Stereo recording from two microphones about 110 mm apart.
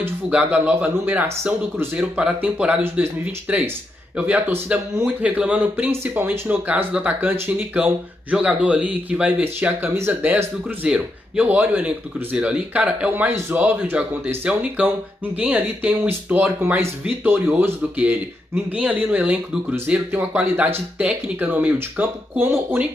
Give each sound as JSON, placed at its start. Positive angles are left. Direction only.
{"t": 0.0, "sound": "speech", "side_deg": -15}
{"t": 10.3, "sound": "speech", "side_deg": -10}